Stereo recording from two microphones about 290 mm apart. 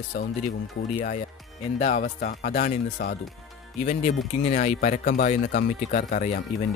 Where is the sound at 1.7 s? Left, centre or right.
Left.